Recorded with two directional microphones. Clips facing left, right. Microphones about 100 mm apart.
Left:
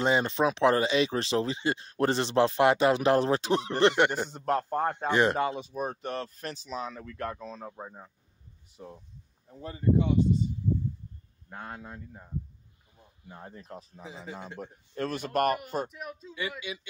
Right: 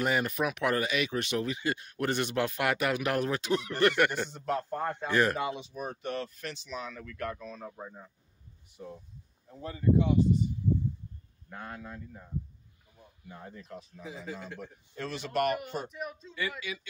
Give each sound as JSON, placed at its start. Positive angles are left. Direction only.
{"t": 0.0, "sound": "speech", "side_deg": 25}
{"t": 4.3, "sound": "a man's voice", "side_deg": 45}
{"t": 4.8, "sound": "speech", "side_deg": 20}
{"t": 5.6, "sound": "speech", "side_deg": 40}
{"t": 9.6, "sound": "speech", "side_deg": 30}
{"t": 13.3, "sound": "speech", "side_deg": 30}
{"t": 14.0, "sound": "speech", "side_deg": 25}
{"t": 14.6, "sound": "a man's voice", "side_deg": 50}
{"t": 15.9, "sound": "a man's voice", "side_deg": 0}
{"t": 16.3, "sound": "speech", "side_deg": 20}